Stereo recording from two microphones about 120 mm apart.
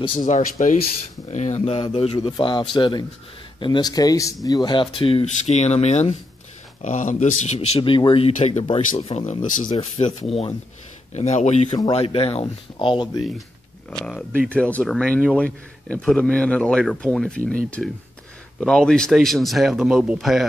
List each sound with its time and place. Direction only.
0.2 s speech: 90° left
1.3 s speech: 75° left (ahead or behind); by 2.1 s 55° left (ahead or behind)
2.1 s speech: 40° left (ahead or behind)
5.2 s speech: 70° left (ahead or behind)
6.8 s speech: 90° left; by 7.8 s 65° left (ahead or behind)
7.8 s speech: 45° left (ahead or behind)
11.1 s speech: 65° left (ahead or behind)
11.9 s speech: 55° left (ahead or behind)
13.8 s speech: 10° left (ahead or behind)